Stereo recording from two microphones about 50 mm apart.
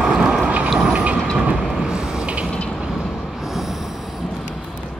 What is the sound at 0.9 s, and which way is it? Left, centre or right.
Train, centre.